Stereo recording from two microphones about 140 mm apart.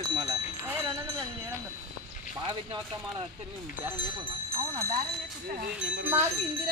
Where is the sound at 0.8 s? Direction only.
25° right (ahead or behind).